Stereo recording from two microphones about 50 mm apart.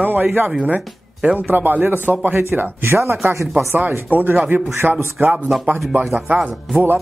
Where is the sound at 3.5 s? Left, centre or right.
Right.